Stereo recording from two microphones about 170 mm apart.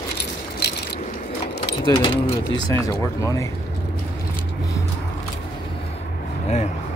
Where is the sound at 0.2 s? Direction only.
75° left (ahead or behind).